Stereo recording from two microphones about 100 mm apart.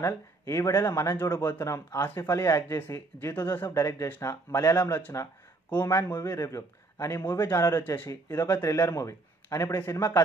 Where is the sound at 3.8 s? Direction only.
35° left (ahead or behind).